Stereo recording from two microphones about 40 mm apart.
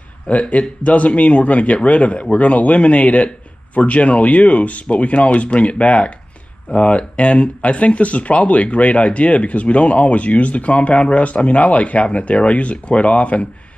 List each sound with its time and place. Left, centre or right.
0.3 s speech: left